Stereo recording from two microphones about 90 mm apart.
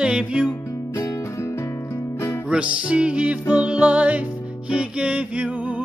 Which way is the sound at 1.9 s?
30° left (ahead or behind).